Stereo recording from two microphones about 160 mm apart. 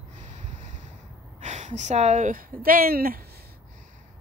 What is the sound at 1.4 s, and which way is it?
Speech, 50° right (ahead or behind).